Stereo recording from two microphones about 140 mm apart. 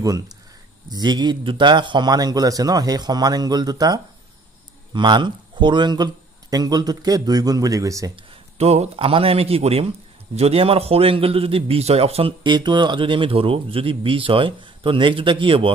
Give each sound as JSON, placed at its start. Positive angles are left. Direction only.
{"t": 0.0, "sound": "a man's voice", "side_deg": -25}
{"t": 8.5, "sound": "a man's voice", "side_deg": -50}